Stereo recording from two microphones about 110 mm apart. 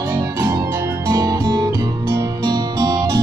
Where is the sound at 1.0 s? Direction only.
30° right (ahead or behind).